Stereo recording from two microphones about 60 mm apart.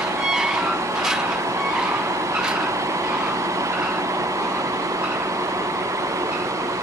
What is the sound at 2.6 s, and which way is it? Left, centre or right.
Vehicle, right.